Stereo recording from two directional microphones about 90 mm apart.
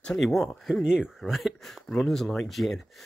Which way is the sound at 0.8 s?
10° right (ahead or behind).